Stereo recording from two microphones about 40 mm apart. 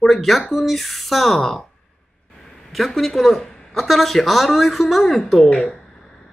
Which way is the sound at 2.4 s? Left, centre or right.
Centre.